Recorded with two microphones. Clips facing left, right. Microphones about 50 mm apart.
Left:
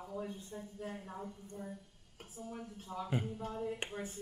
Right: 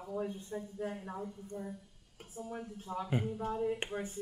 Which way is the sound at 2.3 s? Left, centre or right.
Right.